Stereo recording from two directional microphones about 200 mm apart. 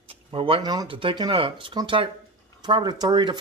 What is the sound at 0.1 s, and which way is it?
Speech, 25° right (ahead or behind).